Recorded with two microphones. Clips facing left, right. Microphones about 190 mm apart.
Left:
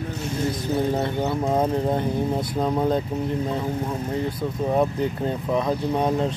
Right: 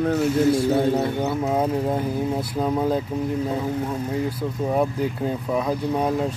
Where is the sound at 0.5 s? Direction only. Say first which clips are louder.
Right 4 dB; 10° right (ahead or behind).